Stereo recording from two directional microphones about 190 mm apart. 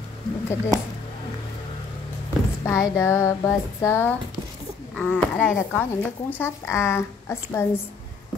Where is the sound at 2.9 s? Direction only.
15° left (ahead or behind).